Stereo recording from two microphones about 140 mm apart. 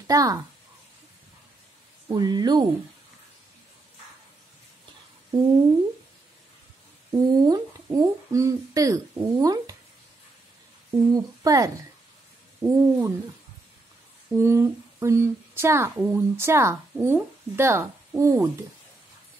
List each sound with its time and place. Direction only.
0.0 s speech: 25° right (ahead or behind)
2.0 s speech: 30° right (ahead or behind)
7.1 s speech: 30° right (ahead or behind)
10.9 s a woman's voice: 25° right (ahead or behind)
14.3 s speech: 20° right (ahead or behind)